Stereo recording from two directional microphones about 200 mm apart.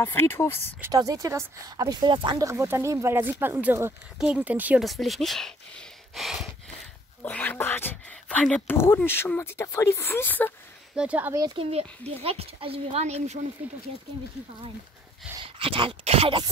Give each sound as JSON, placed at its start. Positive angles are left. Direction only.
{"t": 0.0, "sound": "speech", "side_deg": 10}
{"t": 0.7, "sound": "speech", "side_deg": -15}
{"t": 11.0, "sound": "speech", "side_deg": -5}
{"t": 11.7, "sound": "speech", "side_deg": -30}
{"t": 15.4, "sound": "speech", "side_deg": -25}